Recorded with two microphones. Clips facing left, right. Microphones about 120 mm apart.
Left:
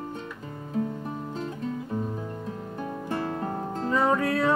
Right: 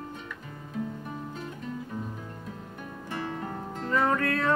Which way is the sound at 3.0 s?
35° left (ahead or behind).